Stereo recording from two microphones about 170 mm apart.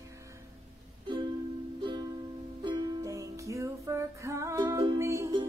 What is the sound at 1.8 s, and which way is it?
Music, 25° right (ahead or behind).